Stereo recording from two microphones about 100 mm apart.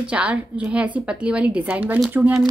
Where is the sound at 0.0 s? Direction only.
10° right (ahead or behind).